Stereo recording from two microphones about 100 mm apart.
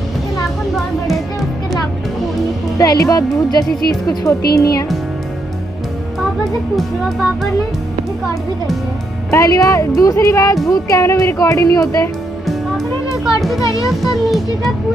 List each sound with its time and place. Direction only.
0.7 s music: centre (ahead or behind)
2.8 s speech: 35° left (ahead or behind)
9.3 s speech: 30° left (ahead or behind)
12.4 s music: centre (ahead or behind)
14.0 s a child's voice: centre (ahead or behind)